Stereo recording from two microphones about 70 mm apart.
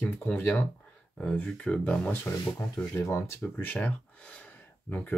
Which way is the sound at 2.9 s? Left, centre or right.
Left.